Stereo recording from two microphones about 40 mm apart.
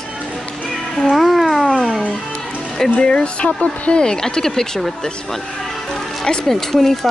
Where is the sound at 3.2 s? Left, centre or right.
Left; by 4.9 s centre.